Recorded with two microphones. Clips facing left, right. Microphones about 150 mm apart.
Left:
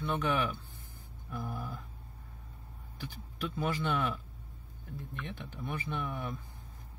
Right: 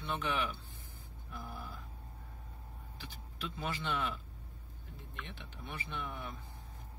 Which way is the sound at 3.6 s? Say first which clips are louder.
Left 5 dB; 55° left (ahead or behind).